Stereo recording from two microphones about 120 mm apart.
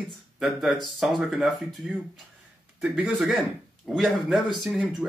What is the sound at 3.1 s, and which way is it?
Speech, centre (ahead or behind).